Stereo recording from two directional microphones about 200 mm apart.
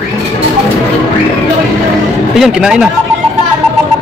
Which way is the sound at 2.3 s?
5° right (ahead or behind).